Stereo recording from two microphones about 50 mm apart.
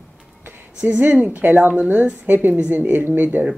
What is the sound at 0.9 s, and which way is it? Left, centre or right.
Speech, right.